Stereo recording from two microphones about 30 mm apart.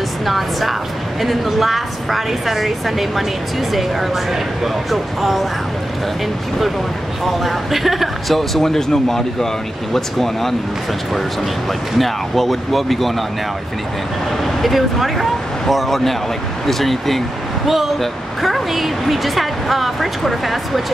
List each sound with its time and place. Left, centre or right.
0.2 s speech: centre
7.2 s speech: centre
12.0 s speech: centre
14.4 s speech: centre
17.6 s speech: centre